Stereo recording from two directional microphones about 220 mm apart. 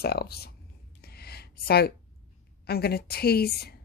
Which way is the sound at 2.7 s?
45° left (ahead or behind).